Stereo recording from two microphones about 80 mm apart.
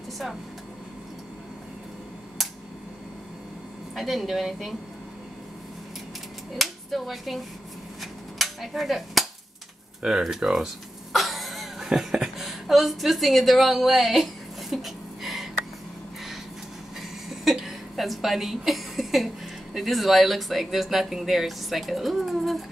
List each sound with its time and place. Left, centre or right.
3.9 s a woman's voice: centre
6.6 s speech: centre
8.0 s a sound: centre
10.0 s speech: centre
11.1 s a sound: centre
17.3 s a woman's voice: centre